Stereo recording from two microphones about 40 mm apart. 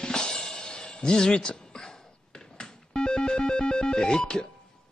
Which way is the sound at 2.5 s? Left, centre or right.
Centre.